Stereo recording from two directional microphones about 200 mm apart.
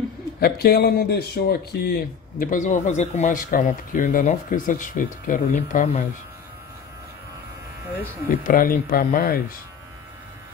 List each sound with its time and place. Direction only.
0.4 s speech: 50° left (ahead or behind)
8.3 s speech: 45° left (ahead or behind)